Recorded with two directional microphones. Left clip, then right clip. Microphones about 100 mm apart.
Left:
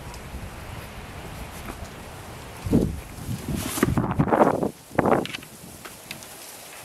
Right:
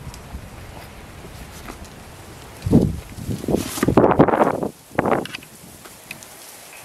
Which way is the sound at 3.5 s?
15° right (ahead or behind).